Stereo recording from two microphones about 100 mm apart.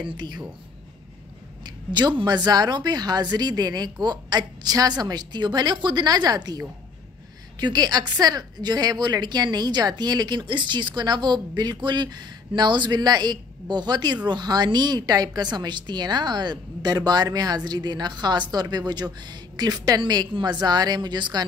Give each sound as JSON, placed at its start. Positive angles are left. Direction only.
{"t": 1.6, "sound": "a woman's voice", "side_deg": -50}